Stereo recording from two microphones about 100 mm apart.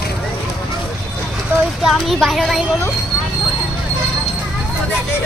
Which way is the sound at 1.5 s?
25° right (ahead or behind).